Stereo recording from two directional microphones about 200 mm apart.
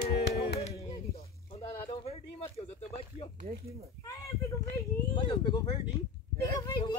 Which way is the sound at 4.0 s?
15° left (ahead or behind).